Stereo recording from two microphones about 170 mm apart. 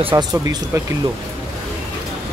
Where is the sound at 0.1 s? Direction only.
20° right (ahead or behind).